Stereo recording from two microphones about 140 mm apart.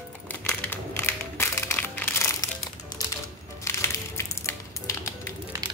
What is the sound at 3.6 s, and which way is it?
Crushing, 20° left (ahead or behind).